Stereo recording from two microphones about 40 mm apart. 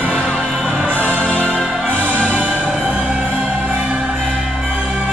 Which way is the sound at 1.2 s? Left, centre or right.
Left.